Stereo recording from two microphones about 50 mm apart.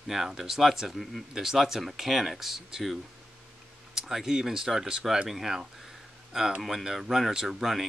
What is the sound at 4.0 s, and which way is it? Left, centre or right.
Speech, centre.